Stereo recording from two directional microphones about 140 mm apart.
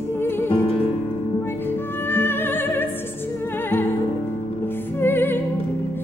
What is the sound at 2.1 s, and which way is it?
Music, 15° left (ahead or behind).